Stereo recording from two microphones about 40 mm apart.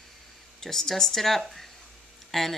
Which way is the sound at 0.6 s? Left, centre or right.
Centre.